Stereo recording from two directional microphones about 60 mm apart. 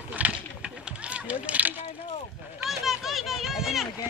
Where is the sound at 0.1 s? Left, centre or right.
Right.